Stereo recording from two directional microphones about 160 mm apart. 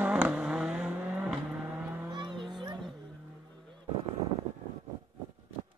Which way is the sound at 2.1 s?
30° right (ahead or behind).